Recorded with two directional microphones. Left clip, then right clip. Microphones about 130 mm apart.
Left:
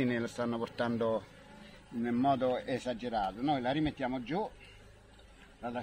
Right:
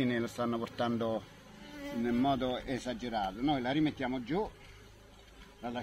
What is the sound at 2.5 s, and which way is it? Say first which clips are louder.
Speech: left 3 dB; 45° left (ahead or behind).